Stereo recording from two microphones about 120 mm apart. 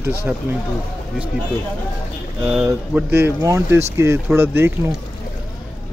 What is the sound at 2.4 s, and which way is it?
A man's voice, 20° right (ahead or behind).